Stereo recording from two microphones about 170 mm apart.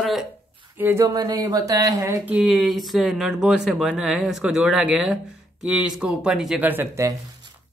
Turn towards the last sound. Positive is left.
turn(degrees=-20)  # may be behind; listen again after turning